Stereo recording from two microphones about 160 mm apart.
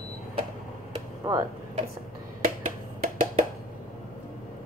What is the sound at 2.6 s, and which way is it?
Music, 55° right (ahead or behind).